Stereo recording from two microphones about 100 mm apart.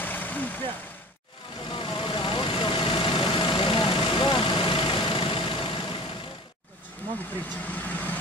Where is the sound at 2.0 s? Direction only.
55° left (ahead or behind).